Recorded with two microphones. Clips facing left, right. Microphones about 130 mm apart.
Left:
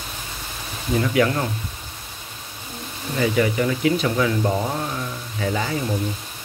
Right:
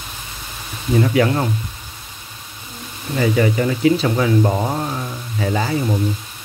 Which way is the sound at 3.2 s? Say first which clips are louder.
Right 3 dB; 40° right (ahead or behind).